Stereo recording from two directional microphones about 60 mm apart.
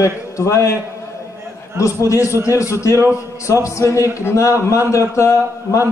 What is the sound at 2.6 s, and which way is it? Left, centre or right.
A man's voice, left.